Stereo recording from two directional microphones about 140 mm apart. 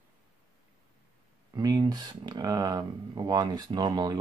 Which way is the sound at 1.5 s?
30° right (ahead or behind).